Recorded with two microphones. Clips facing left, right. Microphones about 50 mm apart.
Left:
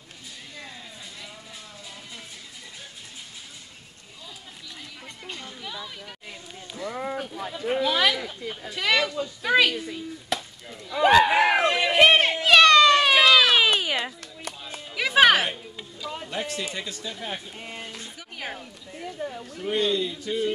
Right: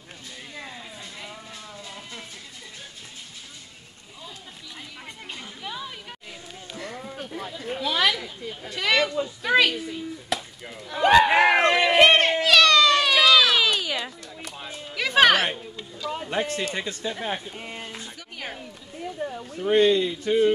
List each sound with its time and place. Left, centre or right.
5.0 s chatter: centre
7.0 s a sound: left
7.8 s speech: centre
10.3 s chop: centre
11.0 s a sound: centre
12.4 s a sound: left
13.1 s run: centre
13.7 s a sound: left
15.0 s music: centre
16.3 s speech: right
17.5 s speech: centre
19.1 s speech: centre
19.6 s speech: right